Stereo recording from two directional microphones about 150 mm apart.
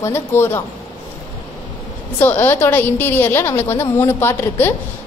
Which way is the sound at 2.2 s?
15° left (ahead or behind).